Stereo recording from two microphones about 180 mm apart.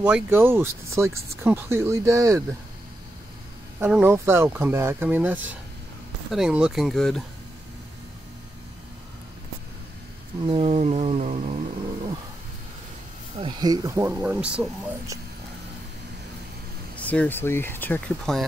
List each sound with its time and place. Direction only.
0.0 s speech: 10° right (ahead or behind)
3.8 s speech: 10° right (ahead or behind)
10.4 s a sound: 30° right (ahead or behind)
13.4 s speech: 25° right (ahead or behind); by 14.7 s 5° right (ahead or behind)
16.9 s speech: 10° left (ahead or behind)